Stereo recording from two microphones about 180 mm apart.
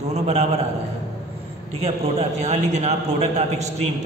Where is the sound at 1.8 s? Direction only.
35° right (ahead or behind).